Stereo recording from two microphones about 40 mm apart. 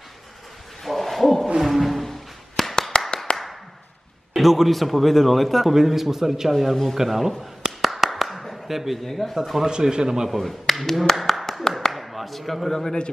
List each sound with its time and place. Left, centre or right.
0.8 s hoot: centre
1.6 s music: centre
3.3 s clapping: left
4.4 s a man's voice: centre
6.5 s a man's voice: centre
7.6 s a sound: centre
9.0 s a man's voice: centre
9.7 s a man's voice: centre
10.3 s speech: centre